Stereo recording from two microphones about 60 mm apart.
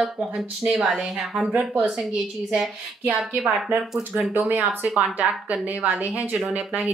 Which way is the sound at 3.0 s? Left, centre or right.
Right.